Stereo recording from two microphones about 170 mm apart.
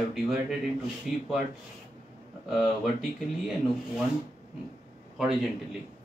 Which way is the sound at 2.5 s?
Centre (ahead or behind).